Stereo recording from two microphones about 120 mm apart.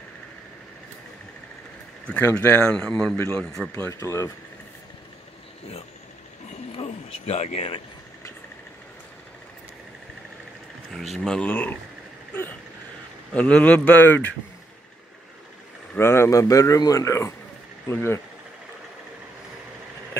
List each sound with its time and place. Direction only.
2.0 s speech: 15° left (ahead or behind)
4.0 s speech: 25° left (ahead or behind)
6.7 s speech: 55° left (ahead or behind)
10.9 s speech: 5° left (ahead or behind)
13.3 s speech: 10° left (ahead or behind)
16.0 s speech: 20° left (ahead or behind)